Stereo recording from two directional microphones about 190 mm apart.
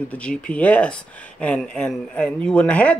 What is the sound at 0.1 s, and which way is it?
Speech, 5° left (ahead or behind).